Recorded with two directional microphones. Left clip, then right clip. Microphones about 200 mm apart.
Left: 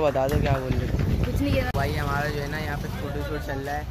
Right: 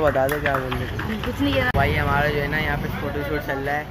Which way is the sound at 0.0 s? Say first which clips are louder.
Right 3 dB; 15° left (ahead or behind).